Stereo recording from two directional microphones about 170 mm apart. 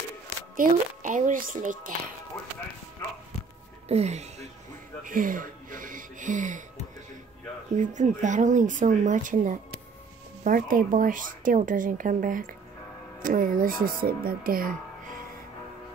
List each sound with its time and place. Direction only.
0.6 s a woman's voice: 50° right (ahead or behind)
3.9 s speech: 40° right (ahead or behind)
5.0 s speech: 55° right (ahead or behind)
7.7 s a woman's voice: 45° right (ahead or behind)